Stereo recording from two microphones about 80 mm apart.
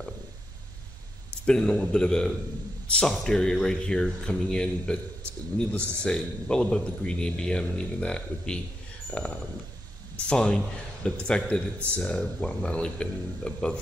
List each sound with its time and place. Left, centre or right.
1.4 s a man's voice: centre